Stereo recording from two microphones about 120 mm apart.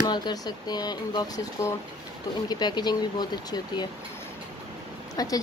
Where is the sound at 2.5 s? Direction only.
35° left (ahead or behind).